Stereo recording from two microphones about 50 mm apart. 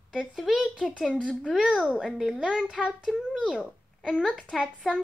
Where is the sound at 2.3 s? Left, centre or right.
Right.